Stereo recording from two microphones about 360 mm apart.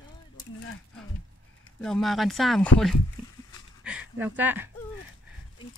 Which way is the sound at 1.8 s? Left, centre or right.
Centre.